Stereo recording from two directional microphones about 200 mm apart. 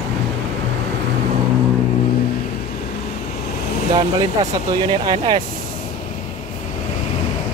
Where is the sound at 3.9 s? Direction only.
20° right (ahead or behind).